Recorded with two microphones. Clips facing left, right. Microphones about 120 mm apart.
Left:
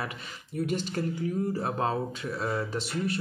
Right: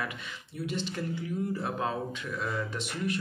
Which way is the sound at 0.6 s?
45° left (ahead or behind).